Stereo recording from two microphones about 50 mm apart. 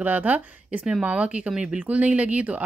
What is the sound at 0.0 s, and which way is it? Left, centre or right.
Speech, right.